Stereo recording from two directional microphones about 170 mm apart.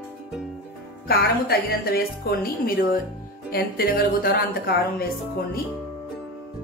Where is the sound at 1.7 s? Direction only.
65° left (ahead or behind).